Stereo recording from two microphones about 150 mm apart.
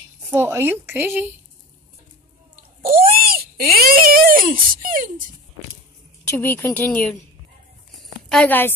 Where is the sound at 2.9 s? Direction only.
75° right (ahead or behind).